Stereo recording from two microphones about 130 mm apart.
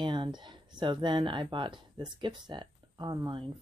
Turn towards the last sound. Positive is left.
turn(degrees=-35)  # may be behind; listen again after turning